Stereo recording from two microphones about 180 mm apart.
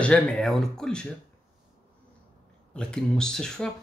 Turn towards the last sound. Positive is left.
turn(degrees=5)  # may be behind; listen again after turning